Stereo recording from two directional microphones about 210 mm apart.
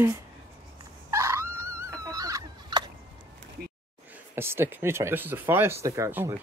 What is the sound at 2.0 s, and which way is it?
Fowl, 15° right (ahead or behind).